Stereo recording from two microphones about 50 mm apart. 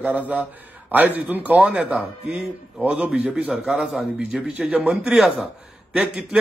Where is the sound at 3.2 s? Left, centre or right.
Right.